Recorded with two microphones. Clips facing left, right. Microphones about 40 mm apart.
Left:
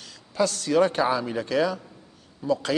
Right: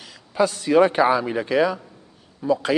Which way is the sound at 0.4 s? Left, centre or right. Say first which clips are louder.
Right 4 dB; centre.